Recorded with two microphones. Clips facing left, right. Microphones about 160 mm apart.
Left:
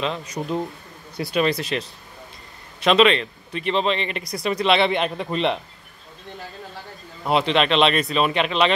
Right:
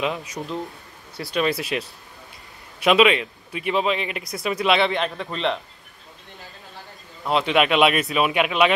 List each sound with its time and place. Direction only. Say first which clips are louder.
0.0 s speech: right 1 dB; 5° right (ahead or behind)
0.4 s speech: left 8 dB; 20° left (ahead or behind)
1.3 s speech: left 1 dB; 5° right (ahead or behind)
4.9 s a man's voice: left 3 dB; 10° left (ahead or behind)
7.4 s speech: right 2 dB; 10° right (ahead or behind)